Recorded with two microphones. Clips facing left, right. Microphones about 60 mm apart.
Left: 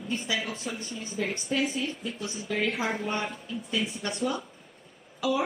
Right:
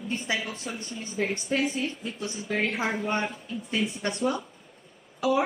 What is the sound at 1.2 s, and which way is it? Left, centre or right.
A woman's voice, right.